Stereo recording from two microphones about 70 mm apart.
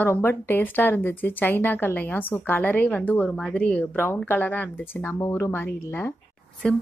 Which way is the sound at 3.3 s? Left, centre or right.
Centre.